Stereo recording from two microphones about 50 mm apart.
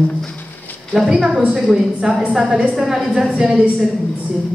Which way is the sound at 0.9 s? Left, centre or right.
Centre.